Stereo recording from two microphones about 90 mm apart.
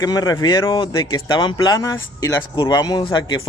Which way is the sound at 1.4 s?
55° left (ahead or behind).